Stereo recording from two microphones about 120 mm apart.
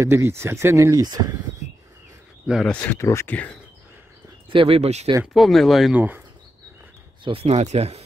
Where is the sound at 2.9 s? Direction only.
25° left (ahead or behind).